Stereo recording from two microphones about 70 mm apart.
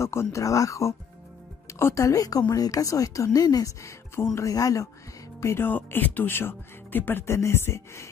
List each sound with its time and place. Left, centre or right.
0.0 s speech: left
3.8 s speech: left
4.4 s speech: left
5.4 s speech: left
5.7 s speech: left